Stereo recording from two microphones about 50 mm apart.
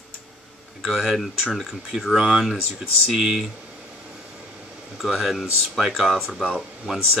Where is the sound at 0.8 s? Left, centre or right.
Centre.